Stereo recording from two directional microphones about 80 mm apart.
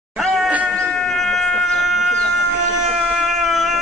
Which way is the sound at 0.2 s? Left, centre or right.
Centre.